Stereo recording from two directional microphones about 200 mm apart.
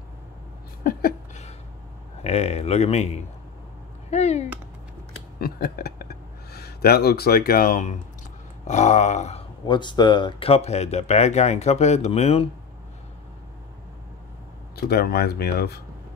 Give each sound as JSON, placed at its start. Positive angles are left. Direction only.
{"t": 2.2, "sound": "speech", "side_deg": 30}
{"t": 4.1, "sound": "speech", "side_deg": 35}
{"t": 5.4, "sound": "speech", "side_deg": 50}
{"t": 14.8, "sound": "speech", "side_deg": 50}